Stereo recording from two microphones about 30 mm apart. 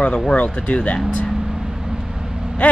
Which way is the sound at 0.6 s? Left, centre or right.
Left.